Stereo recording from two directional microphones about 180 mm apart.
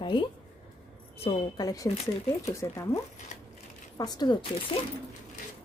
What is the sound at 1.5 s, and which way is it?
A woman's voice, 20° left (ahead or behind).